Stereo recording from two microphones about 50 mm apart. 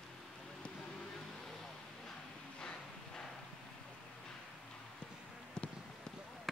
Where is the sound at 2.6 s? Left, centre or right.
Centre.